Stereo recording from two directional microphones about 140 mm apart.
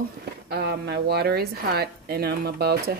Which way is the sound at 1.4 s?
90° right.